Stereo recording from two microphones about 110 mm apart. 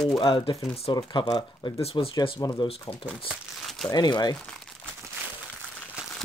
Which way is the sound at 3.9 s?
40° left (ahead or behind).